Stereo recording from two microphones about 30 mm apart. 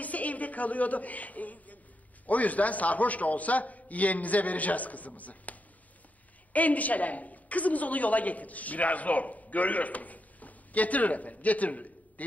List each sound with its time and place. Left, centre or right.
0.0 s a man's voice: left